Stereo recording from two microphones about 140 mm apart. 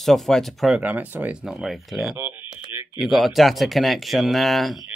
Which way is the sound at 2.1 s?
15° right (ahead or behind).